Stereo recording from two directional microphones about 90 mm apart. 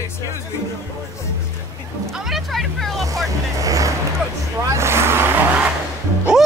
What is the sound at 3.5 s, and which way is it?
Vehicle, 40° right (ahead or behind).